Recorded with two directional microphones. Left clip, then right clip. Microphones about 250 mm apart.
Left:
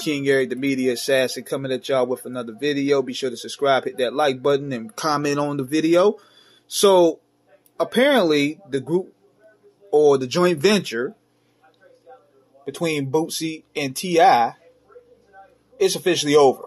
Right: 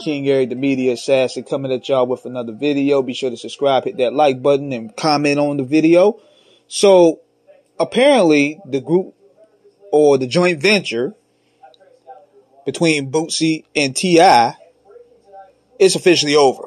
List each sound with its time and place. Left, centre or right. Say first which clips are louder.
0.0 s speech: right 3 dB; centre
12.6 s speech: right 7 dB; right
15.8 s speech: right 7 dB; right